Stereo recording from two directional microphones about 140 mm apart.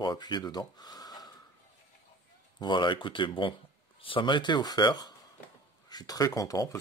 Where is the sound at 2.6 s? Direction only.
35° left (ahead or behind).